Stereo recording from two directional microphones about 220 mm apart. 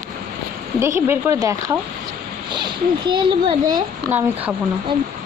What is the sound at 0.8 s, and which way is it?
Speech, 10° right (ahead or behind).